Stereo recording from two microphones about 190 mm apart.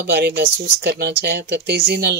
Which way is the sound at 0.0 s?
60° right (ahead or behind).